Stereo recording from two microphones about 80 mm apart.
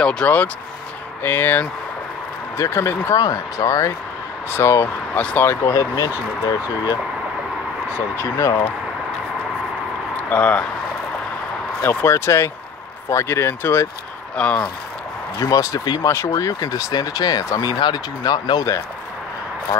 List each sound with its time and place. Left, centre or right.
0.0 s speech: centre
1.2 s speech: left
5.1 s speech: centre
5.4 s speech: left
8.2 s speech: left
10.1 s a sound: centre
11.9 s speech: left
14.3 s speech: centre
15.3 s speech: left
16.0 s speech: left
16.3 s speech: left
17.7 s speech: left